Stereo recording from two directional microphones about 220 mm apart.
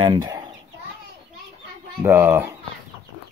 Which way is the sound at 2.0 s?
10° right (ahead or behind).